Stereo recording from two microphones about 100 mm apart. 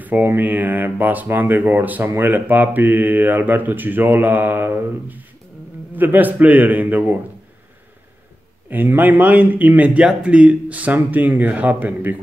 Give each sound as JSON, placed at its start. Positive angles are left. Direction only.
{"t": 0.0, "sound": "speech", "side_deg": -20}
{"t": 8.6, "sound": "speech", "side_deg": -20}